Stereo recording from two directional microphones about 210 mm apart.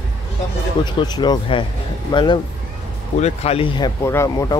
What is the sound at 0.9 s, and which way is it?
Speech, 20° left (ahead or behind).